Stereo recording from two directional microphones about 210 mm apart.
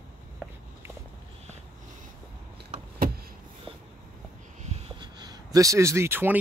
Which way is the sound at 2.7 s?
40° right (ahead or behind).